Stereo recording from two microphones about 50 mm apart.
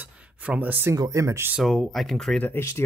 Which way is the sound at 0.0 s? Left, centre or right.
Right.